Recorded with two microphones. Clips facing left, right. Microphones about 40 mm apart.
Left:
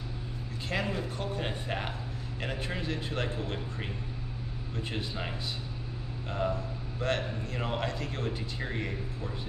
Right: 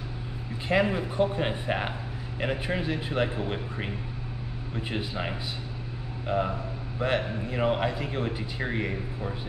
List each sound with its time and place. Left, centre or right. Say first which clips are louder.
0.7 s a man's voice: right 8 dB; right